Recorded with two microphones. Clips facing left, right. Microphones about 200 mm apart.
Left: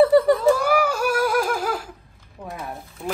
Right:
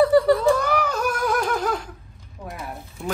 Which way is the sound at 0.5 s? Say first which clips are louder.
Left 2 dB; 10° left (ahead or behind).